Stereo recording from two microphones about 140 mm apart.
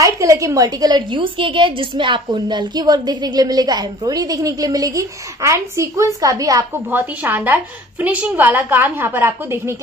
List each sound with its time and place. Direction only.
0.0 s a woman's voice: 25° right (ahead or behind)
6.9 s a woman's voice: 15° right (ahead or behind)